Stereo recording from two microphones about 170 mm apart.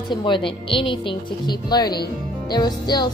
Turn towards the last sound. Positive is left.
turn(degrees=25)  # may be behind; listen again after turning